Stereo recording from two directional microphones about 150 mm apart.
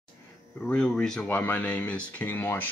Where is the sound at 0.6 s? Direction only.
5° left (ahead or behind).